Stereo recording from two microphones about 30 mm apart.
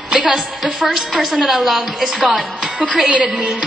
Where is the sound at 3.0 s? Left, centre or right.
Right.